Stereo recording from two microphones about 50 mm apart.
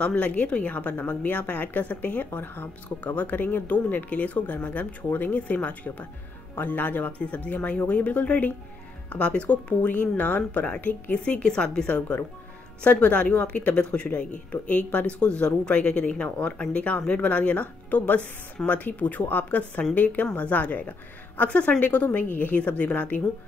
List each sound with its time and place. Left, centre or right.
0.0 s speech: left
3.0 s speech: left
11.4 s speech: centre; by 23.2 s left